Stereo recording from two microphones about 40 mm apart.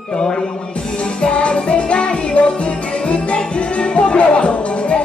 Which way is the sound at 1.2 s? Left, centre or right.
Left.